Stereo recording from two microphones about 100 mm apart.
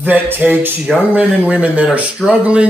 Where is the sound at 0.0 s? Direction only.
20° right (ahead or behind).